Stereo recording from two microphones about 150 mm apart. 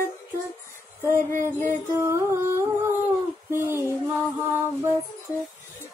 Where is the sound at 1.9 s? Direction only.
20° right (ahead or behind).